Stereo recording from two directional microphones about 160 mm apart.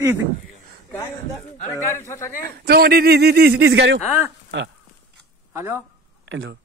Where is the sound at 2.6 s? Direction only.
80° right.